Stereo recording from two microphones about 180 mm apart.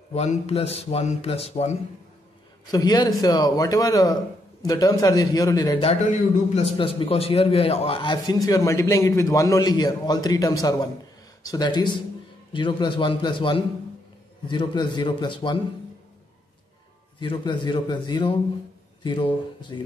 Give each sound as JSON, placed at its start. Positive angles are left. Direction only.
{"t": 0.1, "sound": "speech", "side_deg": 35}
{"t": 2.7, "sound": "a man's voice", "side_deg": 20}
{"t": 5.8, "sound": "a man's voice", "side_deg": 40}
{"t": 17.2, "sound": "a man's voice", "side_deg": 25}